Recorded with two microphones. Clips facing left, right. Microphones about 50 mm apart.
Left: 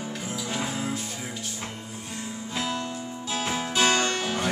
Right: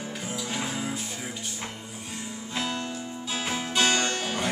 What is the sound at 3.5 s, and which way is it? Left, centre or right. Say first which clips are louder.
Music: left 1 dB; centre.